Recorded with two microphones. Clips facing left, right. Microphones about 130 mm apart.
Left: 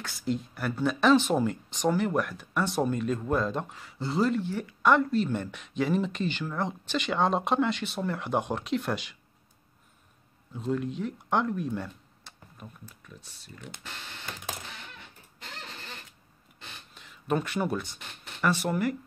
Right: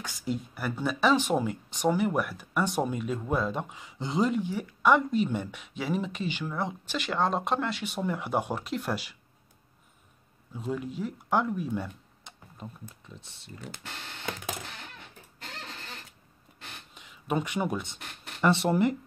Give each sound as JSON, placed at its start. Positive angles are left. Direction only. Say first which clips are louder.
{"t": 0.0, "sound": "speech", "louder": "left 2 dB", "side_deg": -10}
{"t": 7.8, "sound": "speech", "louder": "even", "side_deg": -10}
{"t": 10.5, "sound": "speech", "louder": "left 3 dB", "side_deg": -5}
{"t": 12.5, "sound": "speech", "louder": "right 4 dB", "side_deg": -25}
{"t": 16.9, "sound": "speech", "louder": "left 1 dB", "side_deg": -15}